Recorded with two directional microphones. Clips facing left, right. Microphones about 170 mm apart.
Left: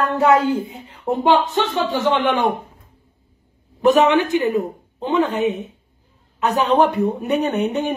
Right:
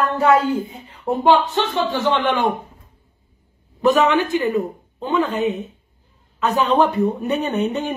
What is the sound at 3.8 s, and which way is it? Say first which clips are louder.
A man's voice: left 2 dB; 20° left (ahead or behind).